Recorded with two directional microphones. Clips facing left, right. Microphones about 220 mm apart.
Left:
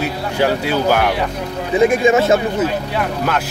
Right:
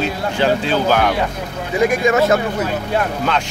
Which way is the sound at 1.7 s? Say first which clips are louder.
Left 2 dB; 25° left (ahead or behind).